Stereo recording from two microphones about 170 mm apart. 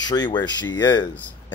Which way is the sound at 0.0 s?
25° left (ahead or behind).